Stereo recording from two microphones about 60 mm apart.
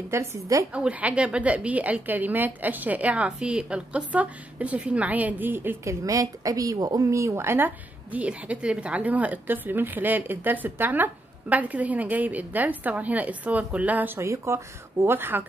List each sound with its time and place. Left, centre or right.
0.1 s a woman's voice: right
0.7 s a woman's voice: right
3.3 s a woman's voice: centre; by 5.8 s right
5.9 s a woman's voice: right
7.1 s a woman's voice: right
14.2 s speech: right